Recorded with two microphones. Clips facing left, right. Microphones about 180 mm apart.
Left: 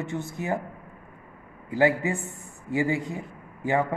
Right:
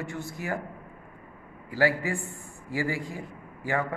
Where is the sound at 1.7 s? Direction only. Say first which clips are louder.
Left 3 dB; 20° left (ahead or behind).